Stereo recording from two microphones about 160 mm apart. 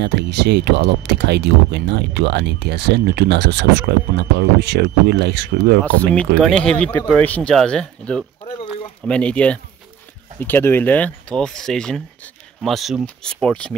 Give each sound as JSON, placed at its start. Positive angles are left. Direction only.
{"t": 0.0, "sound": "speech", "side_deg": -90}
{"t": 6.0, "sound": "speech", "side_deg": 5}